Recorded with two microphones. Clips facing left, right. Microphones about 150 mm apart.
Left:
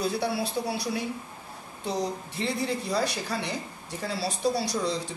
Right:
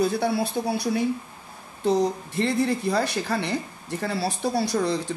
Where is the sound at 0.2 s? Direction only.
50° right (ahead or behind).